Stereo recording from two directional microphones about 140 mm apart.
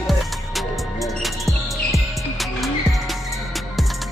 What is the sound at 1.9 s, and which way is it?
Music, centre (ahead or behind).